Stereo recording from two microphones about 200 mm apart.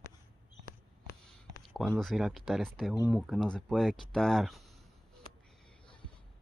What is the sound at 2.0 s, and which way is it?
Speech, centre (ahead or behind).